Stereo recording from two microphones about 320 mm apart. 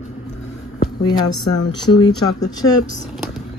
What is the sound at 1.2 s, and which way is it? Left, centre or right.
Speech, left.